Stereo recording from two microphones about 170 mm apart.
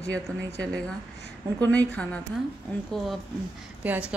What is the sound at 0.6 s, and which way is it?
A woman's voice, 5° left (ahead or behind).